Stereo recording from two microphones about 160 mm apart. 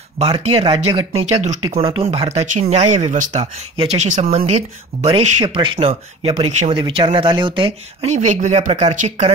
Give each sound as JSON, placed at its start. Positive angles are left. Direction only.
{"t": 0.2, "sound": "speech", "side_deg": -40}
{"t": 1.4, "sound": "speech", "side_deg": -45}